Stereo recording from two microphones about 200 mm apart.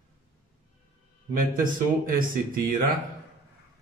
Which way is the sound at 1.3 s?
45° right (ahead or behind).